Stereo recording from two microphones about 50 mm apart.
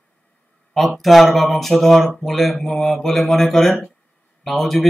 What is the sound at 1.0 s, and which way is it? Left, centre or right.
Speech, centre.